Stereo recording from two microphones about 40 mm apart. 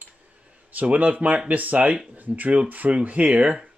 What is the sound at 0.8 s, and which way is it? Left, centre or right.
Speech, right.